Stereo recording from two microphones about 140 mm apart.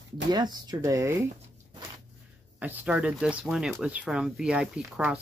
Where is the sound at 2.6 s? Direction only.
10° right (ahead or behind).